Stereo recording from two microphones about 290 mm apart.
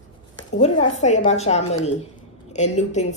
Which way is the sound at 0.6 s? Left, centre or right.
Left.